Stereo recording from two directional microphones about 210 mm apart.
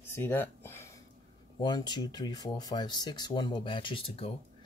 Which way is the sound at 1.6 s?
20° left (ahead or behind).